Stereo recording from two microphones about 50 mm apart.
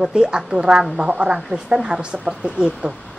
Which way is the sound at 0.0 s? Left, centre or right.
Centre.